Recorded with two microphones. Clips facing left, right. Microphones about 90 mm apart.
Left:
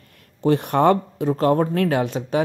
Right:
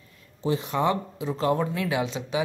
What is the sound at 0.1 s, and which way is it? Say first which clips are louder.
Speech: left 8 dB; 65° left (ahead or behind).